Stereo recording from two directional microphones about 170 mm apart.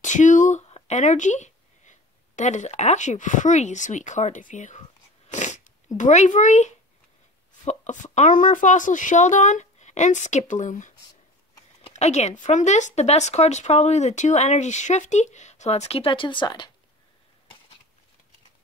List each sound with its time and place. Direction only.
0.0 s speech: 45° left (ahead or behind)
5.3 s a sound: 45° left (ahead or behind)
7.6 s a woman's voice: 45° left (ahead or behind); by 16.7 s 25° left (ahead or behind)